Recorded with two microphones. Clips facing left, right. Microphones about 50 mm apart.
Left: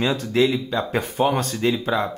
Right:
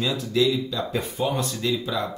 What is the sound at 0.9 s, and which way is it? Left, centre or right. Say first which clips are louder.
Speech: left 7 dB; left.